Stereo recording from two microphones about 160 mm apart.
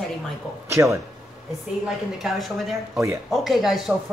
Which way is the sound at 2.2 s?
Centre (ahead or behind).